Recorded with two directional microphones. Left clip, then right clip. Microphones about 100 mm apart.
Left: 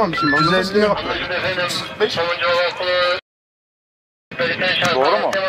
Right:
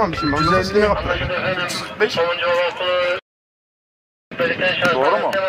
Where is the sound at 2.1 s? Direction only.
35° left (ahead or behind).